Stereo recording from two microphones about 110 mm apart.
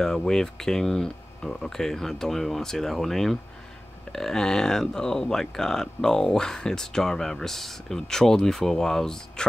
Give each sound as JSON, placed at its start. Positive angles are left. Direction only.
{"t": 0.0, "sound": "speech", "side_deg": 5}